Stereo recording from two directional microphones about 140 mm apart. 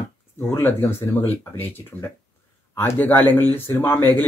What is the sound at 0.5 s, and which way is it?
A man's voice, 15° left (ahead or behind).